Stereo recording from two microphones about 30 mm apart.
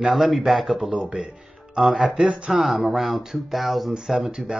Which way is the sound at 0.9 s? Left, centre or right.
Right.